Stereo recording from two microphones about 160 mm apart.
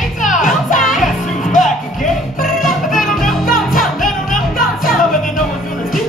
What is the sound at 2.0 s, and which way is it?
Music, 60° left (ahead or behind).